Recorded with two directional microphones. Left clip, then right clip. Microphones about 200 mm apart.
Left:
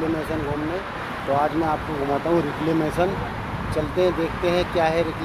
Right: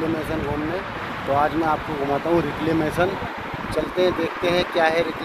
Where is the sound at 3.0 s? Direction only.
Centre (ahead or behind).